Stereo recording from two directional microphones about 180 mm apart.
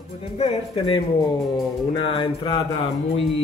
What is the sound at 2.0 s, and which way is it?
Speech, 25° left (ahead or behind).